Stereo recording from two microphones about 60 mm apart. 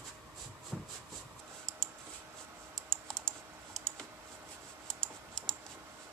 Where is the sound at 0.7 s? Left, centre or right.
Centre.